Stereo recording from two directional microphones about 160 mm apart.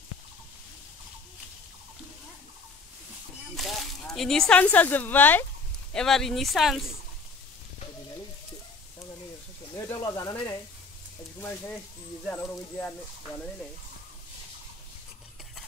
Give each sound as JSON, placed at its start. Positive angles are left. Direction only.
{"t": 3.5, "sound": "speech", "side_deg": 0}
{"t": 9.8, "sound": "a sound", "side_deg": 20}
{"t": 12.3, "sound": "speech", "side_deg": 10}